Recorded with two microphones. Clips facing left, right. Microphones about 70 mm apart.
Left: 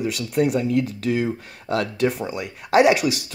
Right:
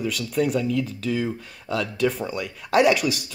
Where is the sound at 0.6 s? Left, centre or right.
Left.